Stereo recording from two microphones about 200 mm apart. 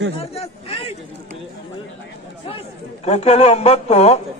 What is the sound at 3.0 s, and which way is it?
Speech, 30° left (ahead or behind).